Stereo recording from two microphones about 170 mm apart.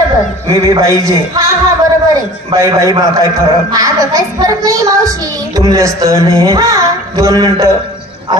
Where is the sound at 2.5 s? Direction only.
20° right (ahead or behind).